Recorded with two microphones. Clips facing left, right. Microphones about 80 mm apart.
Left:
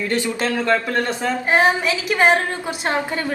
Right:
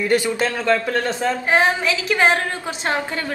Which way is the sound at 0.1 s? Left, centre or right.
Centre.